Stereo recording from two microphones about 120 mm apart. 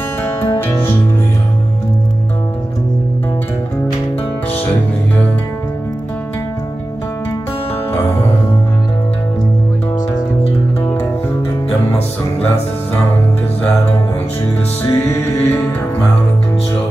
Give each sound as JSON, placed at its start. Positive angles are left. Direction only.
{"t": 0.2, "sound": "music", "side_deg": 20}
{"t": 4.6, "sound": "music", "side_deg": 15}
{"t": 14.8, "sound": "music", "side_deg": 20}